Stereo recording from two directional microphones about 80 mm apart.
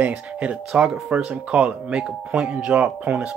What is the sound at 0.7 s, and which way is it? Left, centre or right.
Speech, centre.